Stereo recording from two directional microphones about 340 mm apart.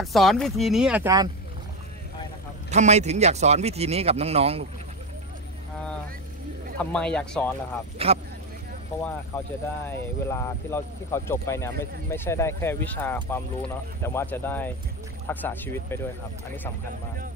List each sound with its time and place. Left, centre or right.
0.0 s speech: centre
2.7 s speech: centre
6.8 s speech: centre
8.0 s speech: centre
9.3 s speech: centre